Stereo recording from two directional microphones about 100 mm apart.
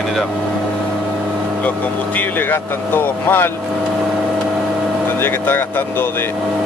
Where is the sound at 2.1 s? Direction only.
20° left (ahead or behind).